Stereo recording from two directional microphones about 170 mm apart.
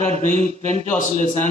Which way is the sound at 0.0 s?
40° right (ahead or behind).